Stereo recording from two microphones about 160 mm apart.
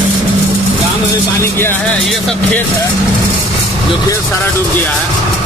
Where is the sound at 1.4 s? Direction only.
15° left (ahead or behind).